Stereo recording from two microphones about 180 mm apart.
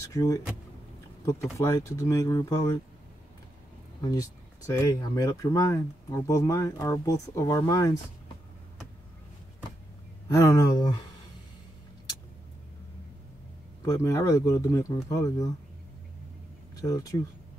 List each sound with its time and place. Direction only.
0.0 s speech: 20° left (ahead or behind)
4.0 s speech: 20° left (ahead or behind)
10.2 s speech: 15° left (ahead or behind)
13.8 s speech: 15° left (ahead or behind)
16.7 s speech: 20° left (ahead or behind)